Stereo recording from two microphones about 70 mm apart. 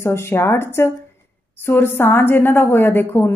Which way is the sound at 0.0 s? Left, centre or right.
Left.